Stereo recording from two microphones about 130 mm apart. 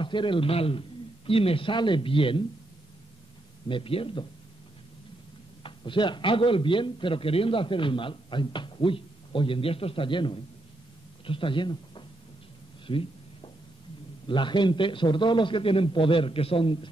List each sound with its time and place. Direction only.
0.0 s a man's voice: 40° left (ahead or behind)
3.6 s a man's voice: 40° left (ahead or behind)
5.6 s a man's voice: 40° left (ahead or behind)
12.8 s a sound: 40° left (ahead or behind)
14.2 s a man's voice: 40° left (ahead or behind)